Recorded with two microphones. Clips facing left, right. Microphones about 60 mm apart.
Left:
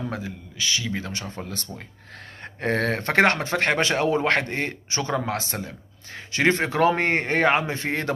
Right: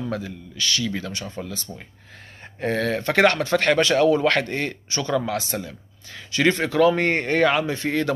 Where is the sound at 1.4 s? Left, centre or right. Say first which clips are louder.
Right 1 dB; left.